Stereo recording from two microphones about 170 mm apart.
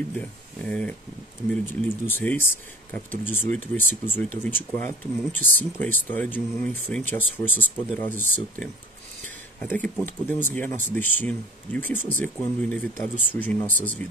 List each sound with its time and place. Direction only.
0.2 s speech: 5° left (ahead or behind)